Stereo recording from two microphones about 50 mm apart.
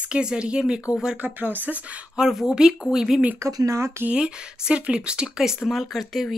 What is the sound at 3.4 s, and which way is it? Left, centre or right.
Speech, right.